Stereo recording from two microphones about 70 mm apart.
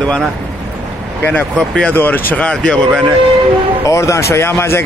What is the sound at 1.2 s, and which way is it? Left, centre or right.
Speech, left.